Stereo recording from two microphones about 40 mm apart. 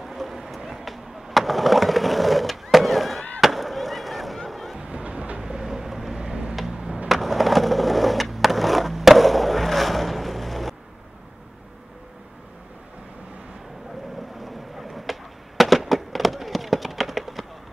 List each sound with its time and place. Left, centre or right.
0.0 s a sound: centre
3.3 s fireworks: centre
4.7 s train: right
5.4 s vehicle: centre
6.7 s a sound: centre
7.1 s skateboard: centre
14.4 s fireworks: centre